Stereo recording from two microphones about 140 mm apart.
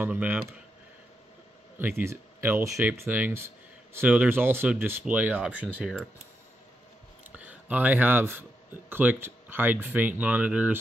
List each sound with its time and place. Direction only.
0.0 s speech: 10° right (ahead or behind)
1.8 s speech: 15° right (ahead or behind)
7.3 s speech: 10° right (ahead or behind)